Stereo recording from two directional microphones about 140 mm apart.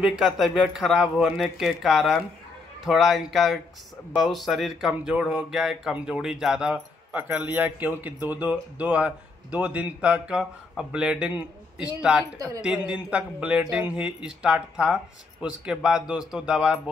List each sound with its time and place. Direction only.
0.0 s speech: 5° right (ahead or behind)
12.4 s speech: 25° right (ahead or behind)
12.6 s speech: 5° right (ahead or behind)